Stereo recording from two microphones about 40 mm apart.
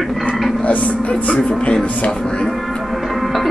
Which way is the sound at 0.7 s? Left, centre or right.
Left.